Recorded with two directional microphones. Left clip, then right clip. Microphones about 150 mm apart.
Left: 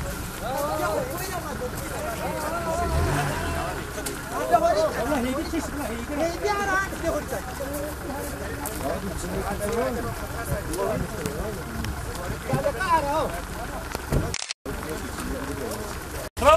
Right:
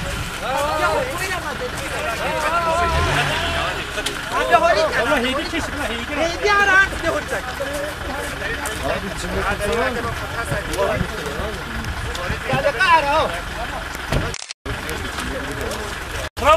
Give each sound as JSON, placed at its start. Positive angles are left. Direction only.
{"t": 0.5, "sound": "a sound", "side_deg": -30}
{"t": 2.2, "sound": "vehicle", "side_deg": -30}
{"t": 4.3, "sound": "speech", "side_deg": -30}
{"t": 9.7, "sound": "speech", "side_deg": -30}
{"t": 12.4, "sound": "speech", "side_deg": -35}
{"t": 16.4, "sound": "speech", "side_deg": 0}